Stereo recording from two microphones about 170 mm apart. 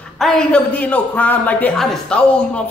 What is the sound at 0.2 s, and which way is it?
A man's voice, 5° left (ahead or behind).